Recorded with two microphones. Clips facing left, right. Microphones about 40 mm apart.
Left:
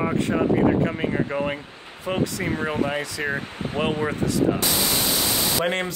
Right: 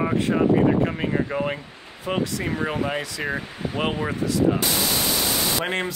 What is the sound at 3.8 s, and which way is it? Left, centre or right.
Speech, centre.